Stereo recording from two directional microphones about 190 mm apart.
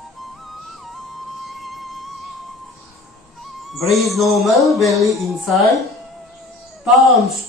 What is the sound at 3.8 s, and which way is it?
Speech, centre (ahead or behind).